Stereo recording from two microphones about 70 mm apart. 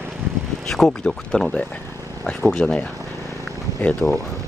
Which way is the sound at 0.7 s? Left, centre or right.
Centre.